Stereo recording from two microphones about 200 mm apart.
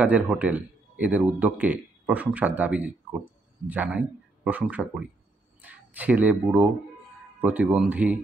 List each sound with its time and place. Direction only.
0.0 s a man's voice: 5° right (ahead or behind)